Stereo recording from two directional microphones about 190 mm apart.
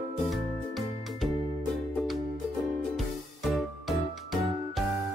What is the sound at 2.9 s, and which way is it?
Music, centre (ahead or behind).